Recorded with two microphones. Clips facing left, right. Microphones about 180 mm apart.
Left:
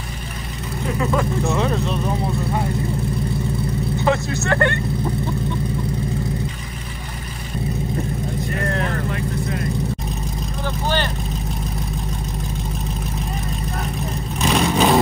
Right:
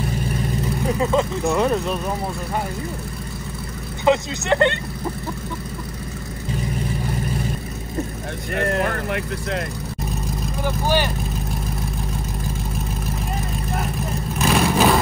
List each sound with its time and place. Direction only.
4.0 s speech: 20° right (ahead or behind)
14.4 s vehicle: centre (ahead or behind)